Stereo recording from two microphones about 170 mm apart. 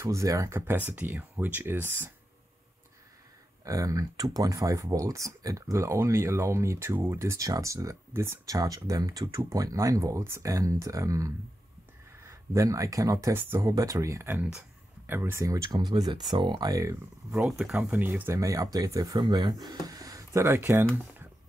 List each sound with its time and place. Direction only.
0.0 s speech: 20° right (ahead or behind)
3.6 s speech: 20° right (ahead or behind)
17.3 s speech: 5° right (ahead or behind)